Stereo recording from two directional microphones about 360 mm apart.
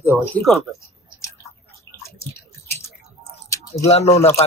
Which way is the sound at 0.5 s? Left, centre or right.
Centre.